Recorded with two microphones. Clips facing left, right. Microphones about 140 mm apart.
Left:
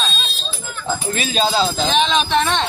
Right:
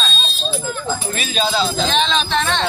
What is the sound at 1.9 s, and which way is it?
Speech, 10° left (ahead or behind).